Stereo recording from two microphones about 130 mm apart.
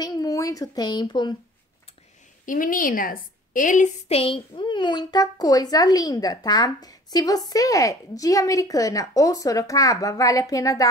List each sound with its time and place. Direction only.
0.0 s speech: 30° left (ahead or behind)
2.4 s a woman's voice: 90° left
4.1 s a child's voice: 45° left (ahead or behind); by 10.9 s 25° left (ahead or behind)